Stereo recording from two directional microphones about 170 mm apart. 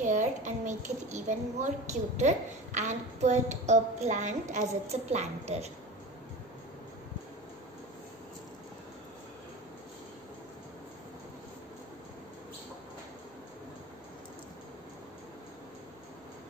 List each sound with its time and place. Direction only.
0.0 s a child's voice: 45° right (ahead or behind)